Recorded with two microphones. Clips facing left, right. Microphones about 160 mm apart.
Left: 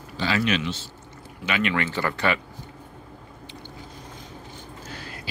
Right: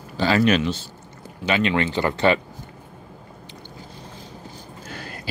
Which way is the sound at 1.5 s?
30° right (ahead or behind).